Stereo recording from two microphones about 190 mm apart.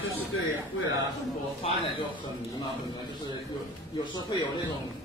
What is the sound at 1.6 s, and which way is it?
Speech, 30° left (ahead or behind).